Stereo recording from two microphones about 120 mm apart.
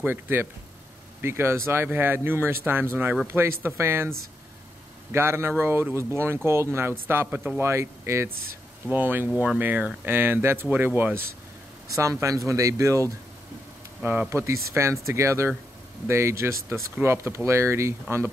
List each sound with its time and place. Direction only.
0.0 s speech: 20° right (ahead or behind)
5.1 s speech: 20° right (ahead or behind)
11.9 s speech: 25° right (ahead or behind)
14.3 s speech: 25° right (ahead or behind)